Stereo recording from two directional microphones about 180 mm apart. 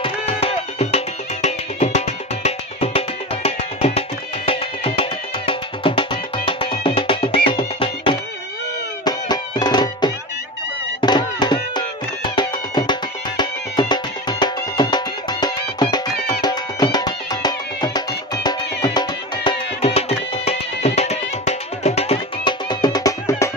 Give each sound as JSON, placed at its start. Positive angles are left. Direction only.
{"t": 0.0, "sound": "music", "side_deg": 35}
{"t": 19.8, "sound": "music", "side_deg": 35}